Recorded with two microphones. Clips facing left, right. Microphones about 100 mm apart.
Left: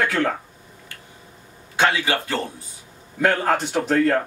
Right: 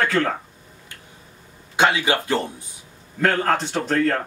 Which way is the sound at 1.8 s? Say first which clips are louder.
Right 1 dB; 15° right (ahead or behind).